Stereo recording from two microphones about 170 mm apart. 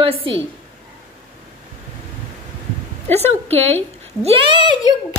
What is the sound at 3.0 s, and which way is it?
A woman's voice, 40° right (ahead or behind).